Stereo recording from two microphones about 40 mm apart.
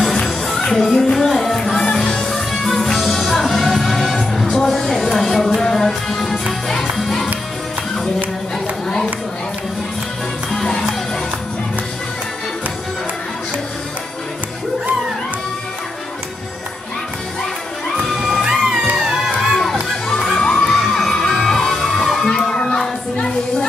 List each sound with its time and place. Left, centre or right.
0.6 s music: centre
2.5 s music: centre
8.8 s chatter: centre
10.5 s music: centre
18.1 s music: centre
18.4 s music: centre
19.4 s children shouting: centre
20.4 s crowd: centre
20.9 s music: centre